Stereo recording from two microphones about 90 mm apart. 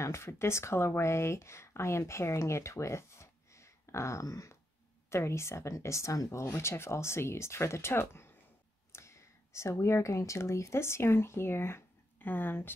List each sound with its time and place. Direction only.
0.0 s speech: 30° left (ahead or behind)